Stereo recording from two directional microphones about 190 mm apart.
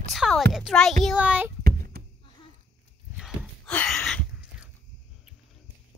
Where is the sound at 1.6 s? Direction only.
55° right (ahead or behind).